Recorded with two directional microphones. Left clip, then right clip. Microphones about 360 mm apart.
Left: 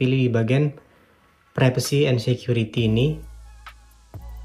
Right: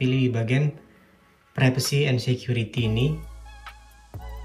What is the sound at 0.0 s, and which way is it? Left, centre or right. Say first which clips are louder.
Speech: left 4 dB; centre.